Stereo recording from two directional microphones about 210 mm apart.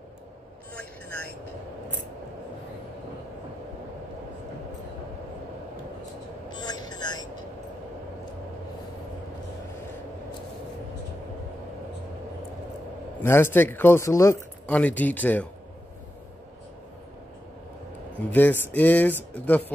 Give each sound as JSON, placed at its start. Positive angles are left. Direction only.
{"t": 6.5, "sound": "vehicle", "side_deg": 20}
{"t": 13.2, "sound": "speech", "side_deg": 10}
{"t": 18.1, "sound": "speech", "side_deg": 10}